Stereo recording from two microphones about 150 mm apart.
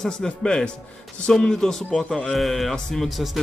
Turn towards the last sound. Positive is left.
turn(degrees=0)  # may be behind; listen again after turning